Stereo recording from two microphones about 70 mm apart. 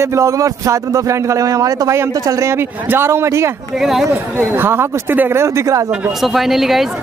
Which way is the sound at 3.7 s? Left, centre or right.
Centre.